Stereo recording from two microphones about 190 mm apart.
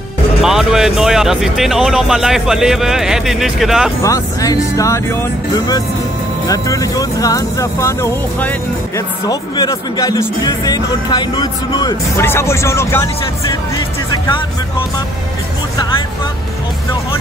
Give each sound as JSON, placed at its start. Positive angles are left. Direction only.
{"t": 0.4, "sound": "speech", "side_deg": 0}
{"t": 4.0, "sound": "speech", "side_deg": 15}